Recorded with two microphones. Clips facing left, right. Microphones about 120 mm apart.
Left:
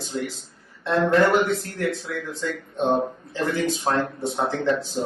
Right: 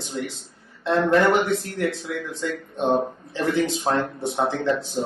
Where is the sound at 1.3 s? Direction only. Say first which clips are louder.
Right 1 dB; 20° right (ahead or behind).